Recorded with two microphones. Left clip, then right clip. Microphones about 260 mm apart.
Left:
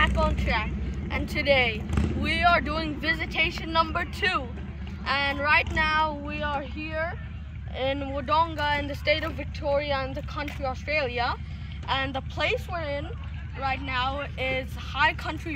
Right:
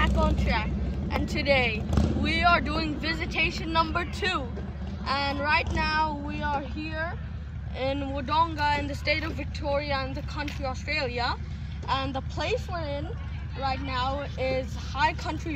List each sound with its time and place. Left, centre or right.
0.0 s vehicle: centre
1.1 s speech: centre